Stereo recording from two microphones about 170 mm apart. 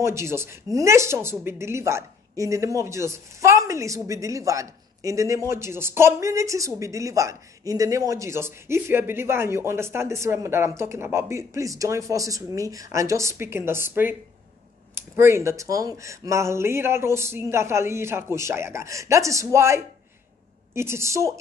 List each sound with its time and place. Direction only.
0.0 s speech: 15° right (ahead or behind)
15.1 s speech: 15° right (ahead or behind)